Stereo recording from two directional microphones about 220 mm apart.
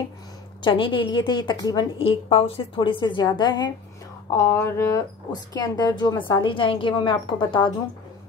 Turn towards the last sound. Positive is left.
turn(degrees=20)  # may be behind; listen again after turning